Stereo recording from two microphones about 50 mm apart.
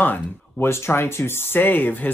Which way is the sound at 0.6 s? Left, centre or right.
Left.